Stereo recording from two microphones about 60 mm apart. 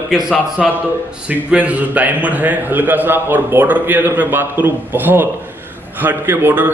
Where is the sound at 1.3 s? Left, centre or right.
Right.